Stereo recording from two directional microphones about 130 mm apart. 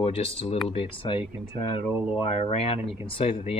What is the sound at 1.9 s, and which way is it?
Speech, 10° right (ahead or behind).